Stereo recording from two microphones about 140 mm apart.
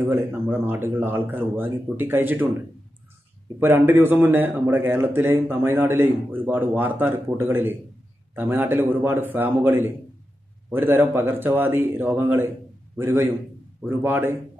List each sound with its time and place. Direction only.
0.0 s a man's voice: 15° right (ahead or behind)
3.5 s a man's voice: 15° right (ahead or behind)